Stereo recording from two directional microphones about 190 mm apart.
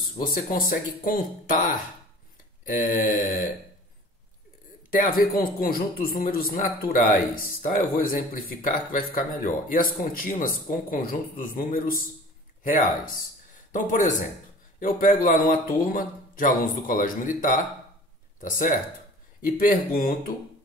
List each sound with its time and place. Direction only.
0.3 s speech: 50° left (ahead or behind)
5.0 s speech: 50° left (ahead or behind)
19.4 s speech: 45° left (ahead or behind)